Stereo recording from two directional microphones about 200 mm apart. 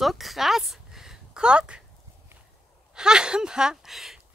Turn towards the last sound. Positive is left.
turn(degrees=0)  # may be behind; listen again after turning